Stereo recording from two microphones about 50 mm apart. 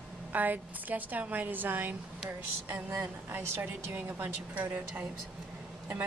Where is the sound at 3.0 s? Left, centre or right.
Right.